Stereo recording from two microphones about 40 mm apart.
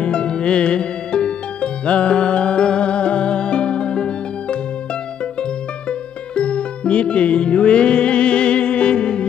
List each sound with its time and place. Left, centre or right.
0.0 s music: left